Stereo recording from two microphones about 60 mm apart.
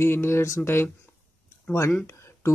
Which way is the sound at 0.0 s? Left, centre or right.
Left.